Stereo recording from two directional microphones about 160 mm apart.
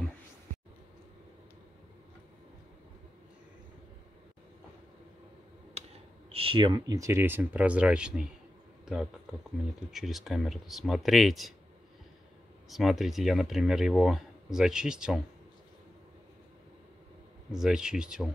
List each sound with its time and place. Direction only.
5.8 s a sound: 40° right (ahead or behind)
6.3 s speech: 35° right (ahead or behind); by 11.5 s centre (ahead or behind)
12.6 s speech: centre (ahead or behind)
17.5 s speech: 5° right (ahead or behind)